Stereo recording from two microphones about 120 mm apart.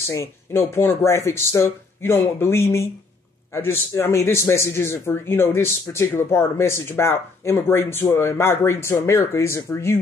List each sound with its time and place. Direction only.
0.1 s a man's voice: 20° left (ahead or behind)